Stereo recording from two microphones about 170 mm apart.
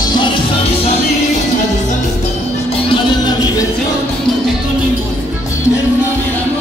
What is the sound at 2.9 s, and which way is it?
Music, 25° left (ahead or behind).